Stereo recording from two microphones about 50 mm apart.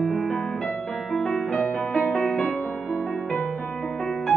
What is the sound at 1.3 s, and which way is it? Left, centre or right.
Music, left.